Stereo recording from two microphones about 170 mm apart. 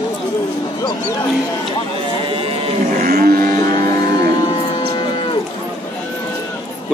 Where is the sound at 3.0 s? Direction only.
60° right (ahead or behind).